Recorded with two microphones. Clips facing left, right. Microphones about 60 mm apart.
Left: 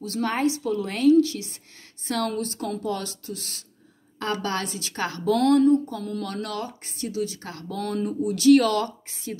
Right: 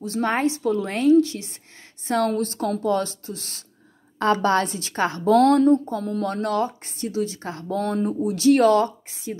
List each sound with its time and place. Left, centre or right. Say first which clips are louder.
0.0 s a woman's voice: right 2 dB; right